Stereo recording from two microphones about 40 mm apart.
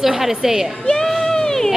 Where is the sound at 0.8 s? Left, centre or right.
Centre.